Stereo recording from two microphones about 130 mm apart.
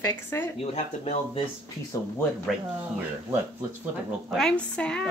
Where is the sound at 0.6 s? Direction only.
50° left (ahead or behind).